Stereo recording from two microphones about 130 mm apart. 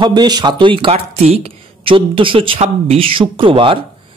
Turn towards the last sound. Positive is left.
turn(degrees=-40)  # may be behind; listen again after turning